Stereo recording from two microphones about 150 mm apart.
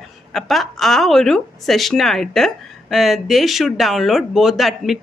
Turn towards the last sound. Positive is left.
turn(degrees=0)  # may be behind; listen again after turning